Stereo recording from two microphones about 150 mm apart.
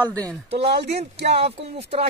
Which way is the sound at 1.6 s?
40° right (ahead or behind).